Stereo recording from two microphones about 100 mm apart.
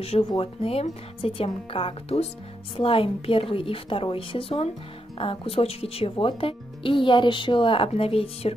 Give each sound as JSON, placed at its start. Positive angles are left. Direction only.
{"t": 0.0, "sound": "speech", "side_deg": 80}
{"t": 2.8, "sound": "speech", "side_deg": 65}